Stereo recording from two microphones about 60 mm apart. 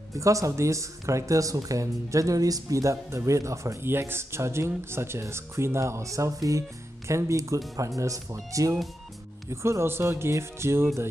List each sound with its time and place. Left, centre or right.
0.1 s speech: right
3.8 s speech: right
9.5 s speech: right